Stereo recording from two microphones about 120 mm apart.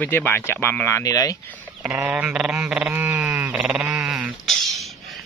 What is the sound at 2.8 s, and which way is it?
Goat, 20° right (ahead or behind).